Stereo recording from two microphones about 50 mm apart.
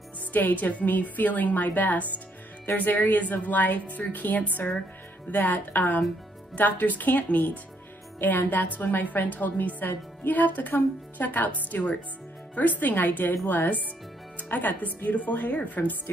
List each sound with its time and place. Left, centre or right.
0.3 s a woman's voice: left
14.3 s music: left
15.0 s a woman's voice: left